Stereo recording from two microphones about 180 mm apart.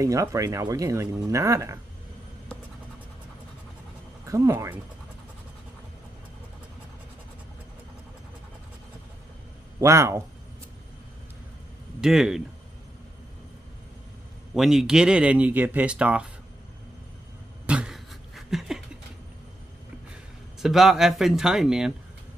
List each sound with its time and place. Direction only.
0.0 s speech: 15° right (ahead or behind)
4.3 s speech: 15° right (ahead or behind)
9.8 s speech: 15° right (ahead or behind)
12.0 s speech: centre (ahead or behind)
14.5 s speech: centre (ahead or behind)
17.6 s a sound: 5° right (ahead or behind)
20.6 s speech: centre (ahead or behind)